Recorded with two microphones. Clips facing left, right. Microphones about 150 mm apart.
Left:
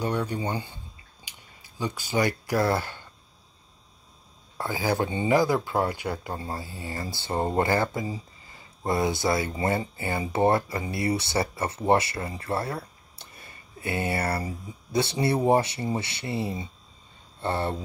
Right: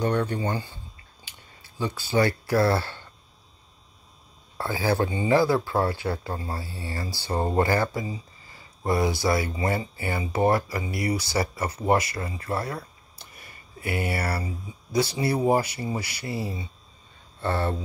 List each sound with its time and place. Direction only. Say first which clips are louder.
0.0 s speech: right 3 dB; 10° left (ahead or behind)
4.6 s speech: right 2 dB; 15° left (ahead or behind)